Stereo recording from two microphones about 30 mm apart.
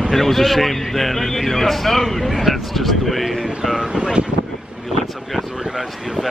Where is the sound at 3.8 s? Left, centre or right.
Right.